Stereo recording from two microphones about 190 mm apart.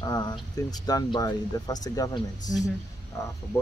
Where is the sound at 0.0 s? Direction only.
20° left (ahead or behind).